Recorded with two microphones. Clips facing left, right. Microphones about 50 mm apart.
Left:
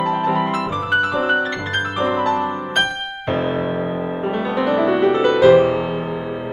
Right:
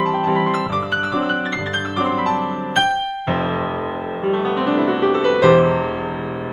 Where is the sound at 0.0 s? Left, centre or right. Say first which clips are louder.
Right 1 dB; right.